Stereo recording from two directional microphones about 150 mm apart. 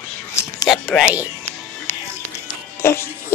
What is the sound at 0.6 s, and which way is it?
Speech, centre (ahead or behind).